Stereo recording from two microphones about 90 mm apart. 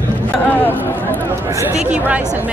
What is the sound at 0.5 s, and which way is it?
Chatter, 20° left (ahead or behind).